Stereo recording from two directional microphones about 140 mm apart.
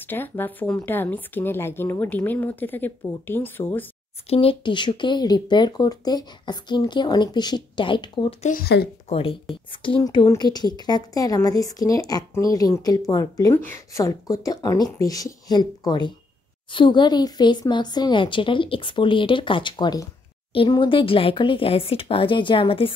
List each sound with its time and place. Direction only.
0.0 s speech: 15° left (ahead or behind)
4.3 s speech: 45° left (ahead or behind)
8.4 s speech: 65° left (ahead or behind)
9.1 s speech: 40° left (ahead or behind)
10.0 s a woman's voice: 25° left (ahead or behind)